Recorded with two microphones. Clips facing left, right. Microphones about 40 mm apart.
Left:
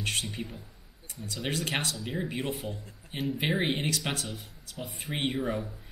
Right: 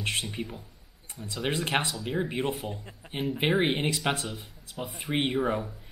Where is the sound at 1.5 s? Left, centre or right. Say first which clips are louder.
Right 3 dB; right.